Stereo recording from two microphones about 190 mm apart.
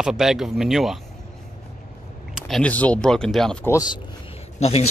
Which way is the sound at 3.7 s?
20° left (ahead or behind).